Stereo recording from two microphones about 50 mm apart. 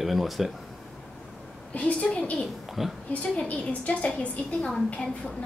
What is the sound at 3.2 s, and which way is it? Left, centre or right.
Speech, left.